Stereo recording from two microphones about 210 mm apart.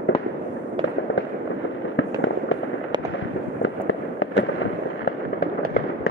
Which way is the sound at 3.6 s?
60° left (ahead or behind).